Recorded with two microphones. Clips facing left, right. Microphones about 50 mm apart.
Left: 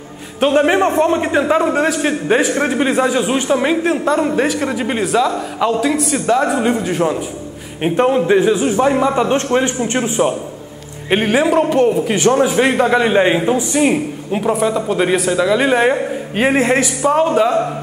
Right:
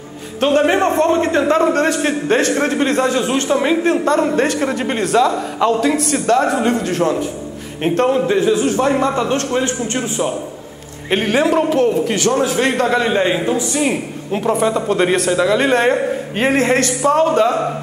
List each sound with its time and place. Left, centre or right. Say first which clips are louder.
0.4 s a man's voice: left 1 dB; centre
11.1 s a man's voice: left 1 dB; centre